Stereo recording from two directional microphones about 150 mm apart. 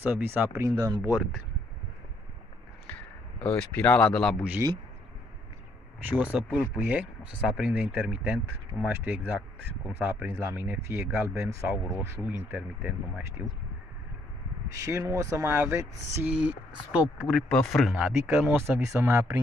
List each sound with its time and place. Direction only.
0.0 s speech: 15° right (ahead or behind)
2.9 s speech: 10° left (ahead or behind)
4.4 s speech: 10° right (ahead or behind)
5.9 s speech: 10° right (ahead or behind)
14.9 s speech: 20° right (ahead or behind)